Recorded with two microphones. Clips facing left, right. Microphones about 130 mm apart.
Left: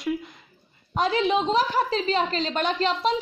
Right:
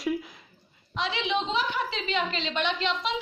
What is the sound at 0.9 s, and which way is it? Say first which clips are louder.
A woman's voice: left 7 dB; 45° left (ahead or behind).